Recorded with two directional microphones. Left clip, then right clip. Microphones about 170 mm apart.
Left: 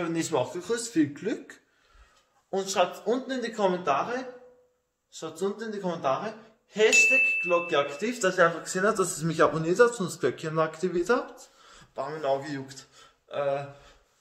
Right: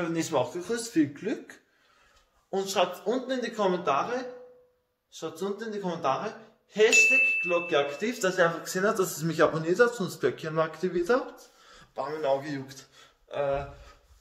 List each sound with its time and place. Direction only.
0.0 s a man's voice: 5° left (ahead or behind)
6.0 s speech: 5° right (ahead or behind)